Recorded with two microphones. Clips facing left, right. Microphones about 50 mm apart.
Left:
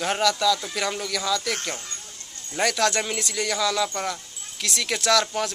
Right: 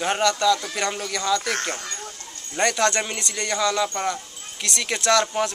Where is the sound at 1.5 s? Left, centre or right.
Right.